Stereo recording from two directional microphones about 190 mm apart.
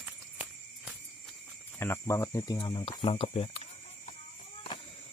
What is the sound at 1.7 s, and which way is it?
Speech, 15° left (ahead or behind).